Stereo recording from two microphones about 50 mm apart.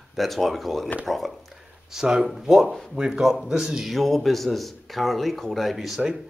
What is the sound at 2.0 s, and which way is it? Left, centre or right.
Speech, centre.